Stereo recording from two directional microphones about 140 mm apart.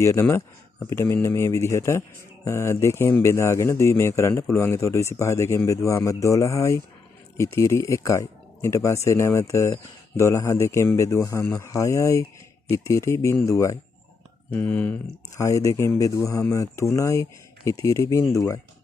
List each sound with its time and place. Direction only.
0.0 s speech: 15° left (ahead or behind)